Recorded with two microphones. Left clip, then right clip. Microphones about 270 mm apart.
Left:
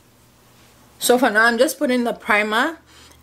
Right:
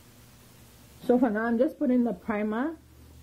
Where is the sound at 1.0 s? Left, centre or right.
Centre.